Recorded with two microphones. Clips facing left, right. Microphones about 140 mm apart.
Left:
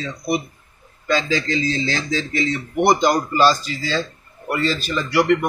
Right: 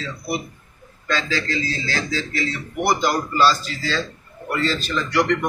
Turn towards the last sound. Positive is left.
turn(degrees=10)  # may be behind; listen again after turning